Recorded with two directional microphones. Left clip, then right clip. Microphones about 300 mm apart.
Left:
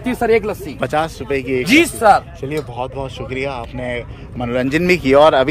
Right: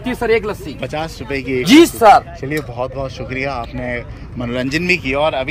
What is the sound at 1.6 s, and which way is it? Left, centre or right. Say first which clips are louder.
Speech: right 5 dB; right.